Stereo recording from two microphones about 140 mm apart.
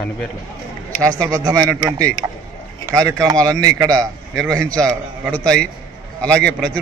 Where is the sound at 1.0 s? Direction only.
25° right (ahead or behind).